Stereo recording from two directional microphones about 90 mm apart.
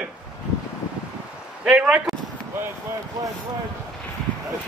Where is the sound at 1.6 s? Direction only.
10° right (ahead or behind).